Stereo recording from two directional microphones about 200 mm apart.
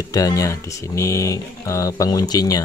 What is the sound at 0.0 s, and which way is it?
Speech, 15° left (ahead or behind).